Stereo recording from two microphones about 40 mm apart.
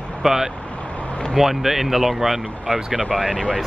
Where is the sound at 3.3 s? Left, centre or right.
Left.